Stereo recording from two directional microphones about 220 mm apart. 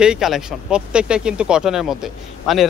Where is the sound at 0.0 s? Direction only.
Centre (ahead or behind).